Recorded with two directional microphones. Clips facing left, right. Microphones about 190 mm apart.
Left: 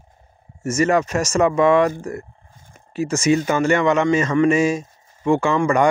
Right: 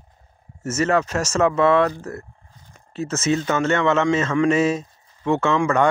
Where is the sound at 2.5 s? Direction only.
50° left (ahead or behind).